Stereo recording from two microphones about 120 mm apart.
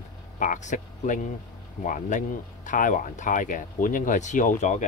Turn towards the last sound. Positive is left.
turn(degrees=90)